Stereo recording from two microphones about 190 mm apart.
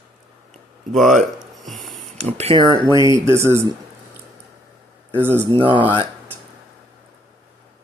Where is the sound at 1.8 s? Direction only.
Centre (ahead or behind).